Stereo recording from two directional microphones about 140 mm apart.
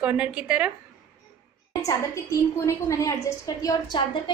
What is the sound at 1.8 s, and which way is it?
A woman's voice, 20° left (ahead or behind).